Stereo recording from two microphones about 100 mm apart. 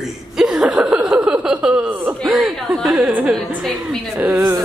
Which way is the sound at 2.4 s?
Centre (ahead or behind).